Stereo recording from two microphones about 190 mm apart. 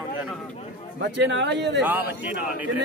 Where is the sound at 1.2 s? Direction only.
70° right (ahead or behind).